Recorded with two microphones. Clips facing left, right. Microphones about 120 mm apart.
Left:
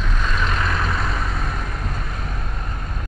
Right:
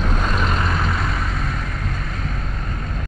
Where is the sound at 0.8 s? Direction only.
Centre (ahead or behind).